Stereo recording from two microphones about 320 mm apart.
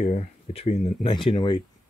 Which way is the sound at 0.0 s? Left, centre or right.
Centre.